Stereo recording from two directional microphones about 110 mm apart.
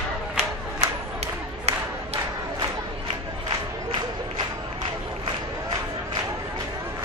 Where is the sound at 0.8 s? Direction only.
75° right (ahead or behind).